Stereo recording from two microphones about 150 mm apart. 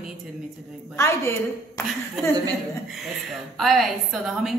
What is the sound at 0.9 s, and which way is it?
Speech, 15° left (ahead or behind).